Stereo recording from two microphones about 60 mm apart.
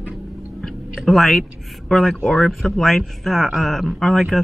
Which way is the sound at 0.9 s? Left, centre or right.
Centre.